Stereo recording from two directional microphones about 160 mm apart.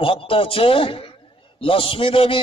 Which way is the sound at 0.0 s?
35° left (ahead or behind).